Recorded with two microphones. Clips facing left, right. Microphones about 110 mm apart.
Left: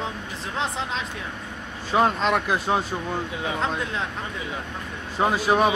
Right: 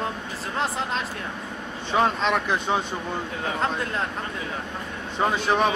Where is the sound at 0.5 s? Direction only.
Centre (ahead or behind).